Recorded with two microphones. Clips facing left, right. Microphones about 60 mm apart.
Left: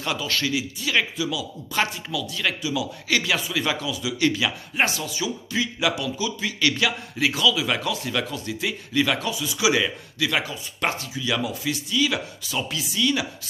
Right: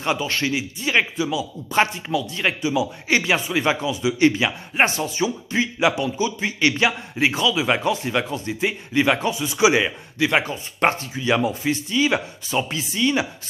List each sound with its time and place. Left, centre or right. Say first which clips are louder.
0.0 s a man's voice: right 3 dB; right